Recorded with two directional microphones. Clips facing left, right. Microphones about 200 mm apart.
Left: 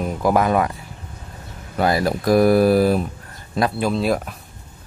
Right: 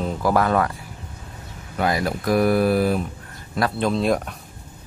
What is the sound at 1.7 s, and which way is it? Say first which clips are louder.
Speech: left 3 dB; 35° left (ahead or behind).